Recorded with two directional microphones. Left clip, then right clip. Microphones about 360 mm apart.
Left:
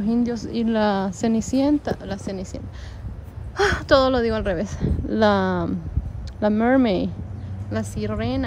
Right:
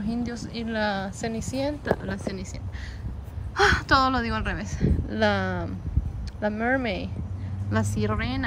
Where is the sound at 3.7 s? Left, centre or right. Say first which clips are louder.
Left 4 dB; centre.